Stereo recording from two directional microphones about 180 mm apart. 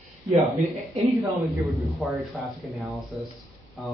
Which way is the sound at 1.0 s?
15° right (ahead or behind).